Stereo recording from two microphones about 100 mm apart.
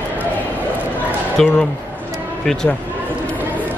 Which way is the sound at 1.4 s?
5° left (ahead or behind).